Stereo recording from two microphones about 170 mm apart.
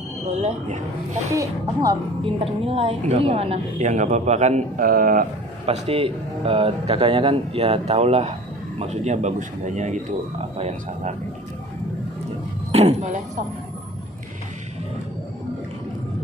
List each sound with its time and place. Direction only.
0.3 s speech: 40° right (ahead or behind)
1.3 s speech: 20° right (ahead or behind)
2.4 s a woman's voice: 35° right (ahead or behind); by 5.2 s 55° right (ahead or behind)
5.7 s speech: 35° right (ahead or behind)
12.7 s speech: 40° right (ahead or behind)